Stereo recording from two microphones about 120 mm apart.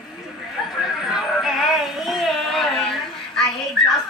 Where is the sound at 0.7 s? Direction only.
5° right (ahead or behind).